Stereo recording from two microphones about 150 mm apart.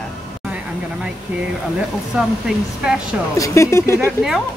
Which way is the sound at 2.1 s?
5° right (ahead or behind).